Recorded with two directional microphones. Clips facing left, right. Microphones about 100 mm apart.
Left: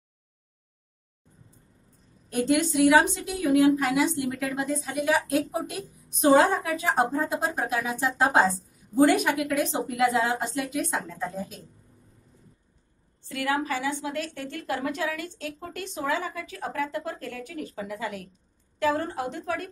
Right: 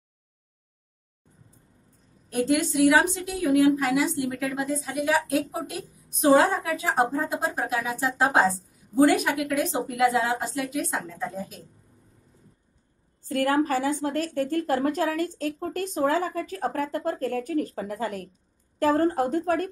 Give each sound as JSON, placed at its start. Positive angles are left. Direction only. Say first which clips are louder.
{"t": 2.2, "sound": "a woman's voice", "louder": "even", "side_deg": 0}
{"t": 13.2, "sound": "a woman's voice", "louder": "right 5 dB", "side_deg": -40}